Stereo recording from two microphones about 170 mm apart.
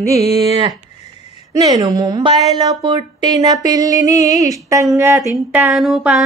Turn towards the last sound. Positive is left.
turn(degrees=0)  # may be behind; listen again after turning